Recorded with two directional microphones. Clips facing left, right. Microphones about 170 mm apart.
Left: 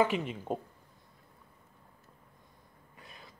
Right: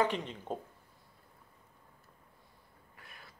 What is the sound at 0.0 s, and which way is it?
Speech, 10° left (ahead or behind).